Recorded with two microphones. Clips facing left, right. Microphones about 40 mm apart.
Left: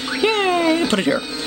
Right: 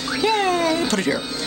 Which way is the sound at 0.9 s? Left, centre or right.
Left.